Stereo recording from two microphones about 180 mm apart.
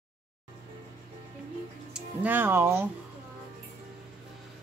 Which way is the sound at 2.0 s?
10° right (ahead or behind).